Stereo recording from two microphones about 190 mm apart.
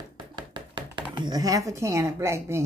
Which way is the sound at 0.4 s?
25° right (ahead or behind).